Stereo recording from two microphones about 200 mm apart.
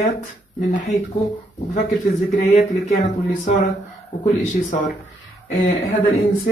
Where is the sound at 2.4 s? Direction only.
35° left (ahead or behind).